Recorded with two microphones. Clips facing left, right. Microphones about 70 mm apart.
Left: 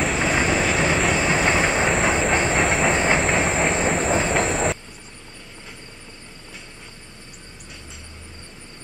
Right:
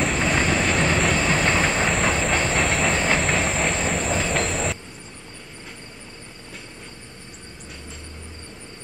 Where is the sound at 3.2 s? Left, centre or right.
Centre.